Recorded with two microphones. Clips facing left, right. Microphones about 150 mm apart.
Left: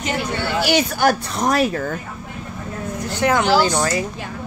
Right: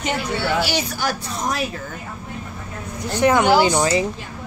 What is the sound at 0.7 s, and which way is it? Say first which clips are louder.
Speech: left 7 dB; 55° left (ahead or behind).